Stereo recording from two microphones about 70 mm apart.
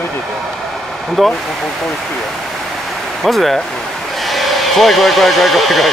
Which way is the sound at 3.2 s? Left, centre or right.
Centre.